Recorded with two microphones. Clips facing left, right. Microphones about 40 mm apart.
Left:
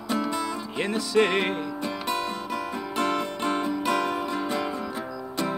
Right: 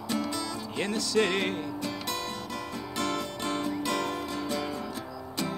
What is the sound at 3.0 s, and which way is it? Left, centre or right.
Music, left.